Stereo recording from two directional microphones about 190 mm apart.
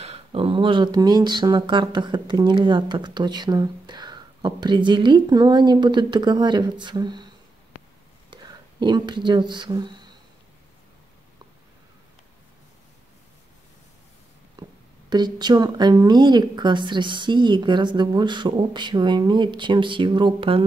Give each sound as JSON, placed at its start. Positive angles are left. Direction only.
{"t": 0.0, "sound": "speech", "side_deg": -30}
{"t": 8.3, "sound": "speech", "side_deg": -25}
{"t": 15.0, "sound": "speech", "side_deg": -20}